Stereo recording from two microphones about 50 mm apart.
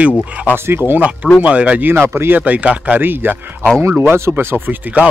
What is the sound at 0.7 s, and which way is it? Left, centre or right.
Speech, right.